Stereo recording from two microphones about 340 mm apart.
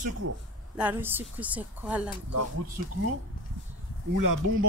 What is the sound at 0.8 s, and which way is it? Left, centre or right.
Speech, centre.